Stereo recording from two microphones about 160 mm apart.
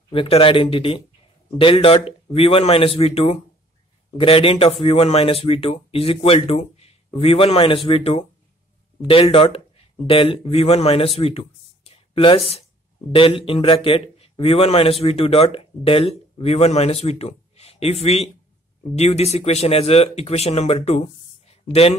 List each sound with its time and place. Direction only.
0.1 s speech: 35° left (ahead or behind)